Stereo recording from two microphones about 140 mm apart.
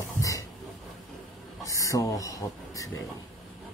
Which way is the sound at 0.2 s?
25° left (ahead or behind).